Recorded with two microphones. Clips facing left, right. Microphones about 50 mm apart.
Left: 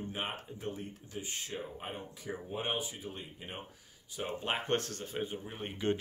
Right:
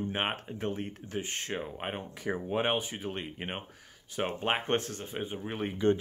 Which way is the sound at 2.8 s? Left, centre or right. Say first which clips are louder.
Right 6 dB; right.